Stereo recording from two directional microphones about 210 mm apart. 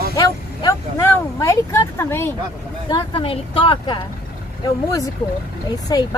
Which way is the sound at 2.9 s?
25° left (ahead or behind).